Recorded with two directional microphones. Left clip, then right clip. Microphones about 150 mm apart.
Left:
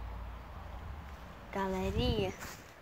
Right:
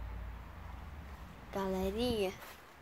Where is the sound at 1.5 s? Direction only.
15° right (ahead or behind).